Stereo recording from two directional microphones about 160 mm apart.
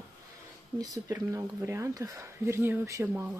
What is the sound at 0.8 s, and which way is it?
Speech, 20° right (ahead or behind).